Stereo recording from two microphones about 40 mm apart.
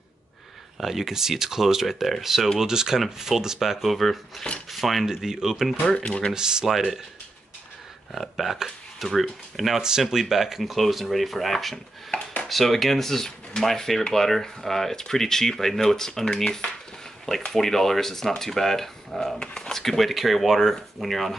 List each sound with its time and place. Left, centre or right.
0.7 s speech: centre
4.6 s dishes: centre
5.0 s speech: centre
5.9 s speech: left
6.3 s speech: centre
8.1 s speech: centre
9.8 s speech: centre
19.4 s speech: centre
19.7 s speech: centre